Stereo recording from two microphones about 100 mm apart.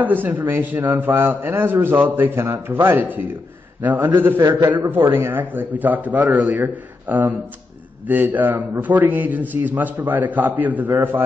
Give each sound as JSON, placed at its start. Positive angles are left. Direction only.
{"t": 0.0, "sound": "a man's voice", "side_deg": -20}